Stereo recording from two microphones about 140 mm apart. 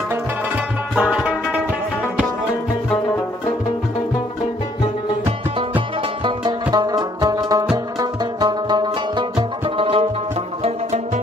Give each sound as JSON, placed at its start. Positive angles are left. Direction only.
{"t": 0.9, "sound": "music", "side_deg": -5}
{"t": 5.6, "sound": "music", "side_deg": -35}